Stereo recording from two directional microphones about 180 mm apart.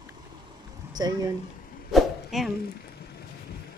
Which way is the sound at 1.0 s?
20° right (ahead or behind).